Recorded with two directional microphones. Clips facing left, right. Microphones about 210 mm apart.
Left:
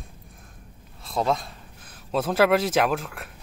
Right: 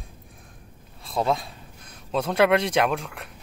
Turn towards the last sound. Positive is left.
turn(degrees=5)  # may be behind; listen again after turning